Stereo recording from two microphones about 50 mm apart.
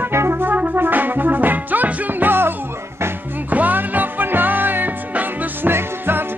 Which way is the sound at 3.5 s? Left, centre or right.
Right.